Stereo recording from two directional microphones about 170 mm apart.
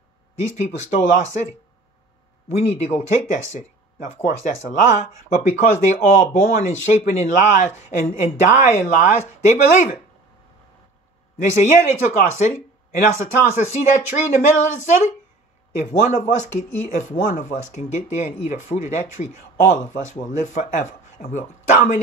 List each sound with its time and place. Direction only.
0.4 s speech: 40° left (ahead or behind)
2.8 s speech: 45° left (ahead or behind)
11.4 s speech: 45° left (ahead or behind)